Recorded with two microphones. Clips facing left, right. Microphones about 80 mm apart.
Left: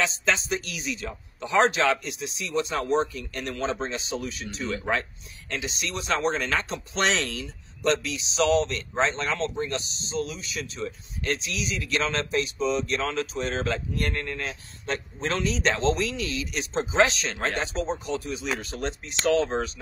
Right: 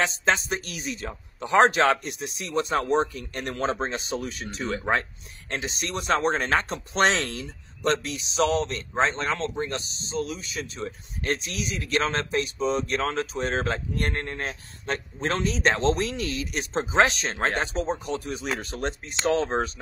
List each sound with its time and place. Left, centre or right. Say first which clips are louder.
0.0 s a man's voice: right 2 dB; right